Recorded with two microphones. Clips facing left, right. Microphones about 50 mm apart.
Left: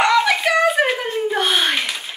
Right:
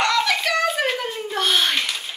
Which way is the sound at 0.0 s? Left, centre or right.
Centre.